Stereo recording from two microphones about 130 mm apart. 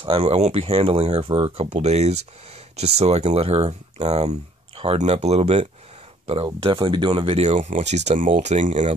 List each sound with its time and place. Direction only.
0.0 s speech: 45° right (ahead or behind)
6.2 s speech: 45° right (ahead or behind)
7.3 s speech: 60° right (ahead or behind)